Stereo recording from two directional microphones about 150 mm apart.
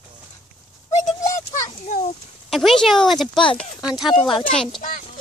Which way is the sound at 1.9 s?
55° left (ahead or behind).